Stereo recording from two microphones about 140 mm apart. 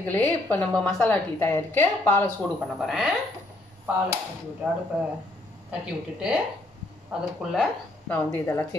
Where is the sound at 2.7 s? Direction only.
Centre (ahead or behind).